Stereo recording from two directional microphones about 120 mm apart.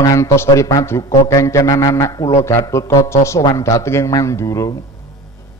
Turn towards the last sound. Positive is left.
turn(degrees=25)  # may be behind; listen again after turning